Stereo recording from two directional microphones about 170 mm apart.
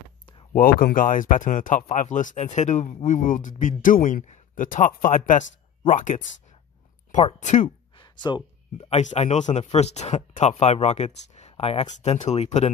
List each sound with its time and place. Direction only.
0.5 s speech: 55° left (ahead or behind)
7.3 s speech: 45° left (ahead or behind)
8.0 s a sound: 25° left (ahead or behind)
8.8 s speech: 40° left (ahead or behind)